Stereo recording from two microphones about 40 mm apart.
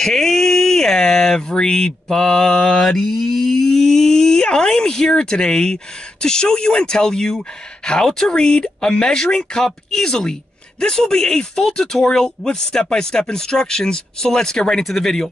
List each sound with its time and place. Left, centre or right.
0.0 s speech: centre